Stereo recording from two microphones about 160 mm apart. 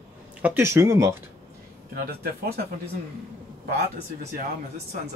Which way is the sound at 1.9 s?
70° right (ahead or behind).